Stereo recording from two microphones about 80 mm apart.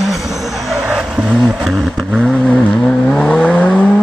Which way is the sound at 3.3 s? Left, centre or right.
Centre.